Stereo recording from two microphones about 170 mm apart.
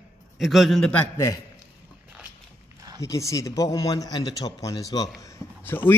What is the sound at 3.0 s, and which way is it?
Speech, 20° left (ahead or behind).